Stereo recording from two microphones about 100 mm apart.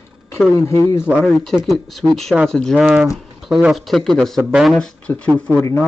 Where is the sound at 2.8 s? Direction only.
5° right (ahead or behind).